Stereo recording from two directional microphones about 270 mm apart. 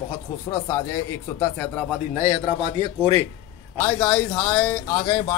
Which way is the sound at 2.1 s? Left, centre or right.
Centre.